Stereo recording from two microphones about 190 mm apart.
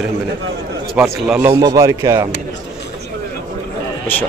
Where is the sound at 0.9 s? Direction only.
5° right (ahead or behind).